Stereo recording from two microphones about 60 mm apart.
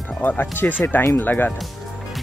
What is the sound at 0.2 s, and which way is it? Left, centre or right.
Speech, left.